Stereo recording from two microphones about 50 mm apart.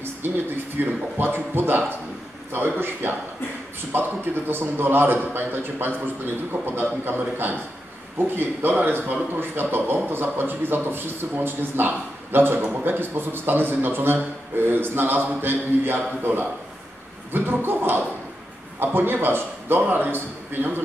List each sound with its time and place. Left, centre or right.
0.2 s a man's voice: right